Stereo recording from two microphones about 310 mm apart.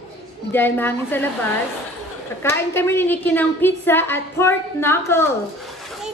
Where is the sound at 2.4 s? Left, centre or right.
Centre.